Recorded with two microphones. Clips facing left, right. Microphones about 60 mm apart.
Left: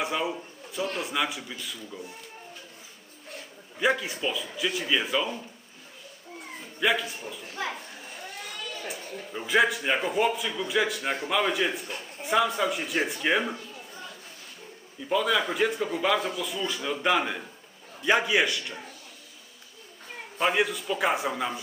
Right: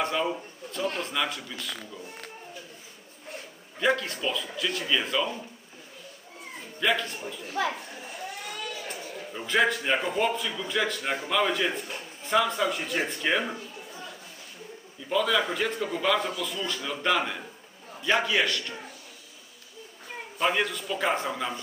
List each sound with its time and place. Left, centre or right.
0.0 s a man's voice: centre
3.8 s a man's voice: centre
6.8 s a man's voice: centre
7.6 s speech: right
9.3 s a man's voice: centre
15.0 s a man's voice: centre
20.3 s a man's voice: centre